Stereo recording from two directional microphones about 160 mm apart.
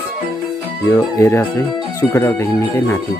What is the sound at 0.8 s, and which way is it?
Speech, 15° left (ahead or behind).